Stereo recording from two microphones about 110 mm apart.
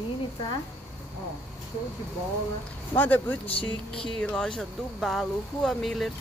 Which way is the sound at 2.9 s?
15° left (ahead or behind).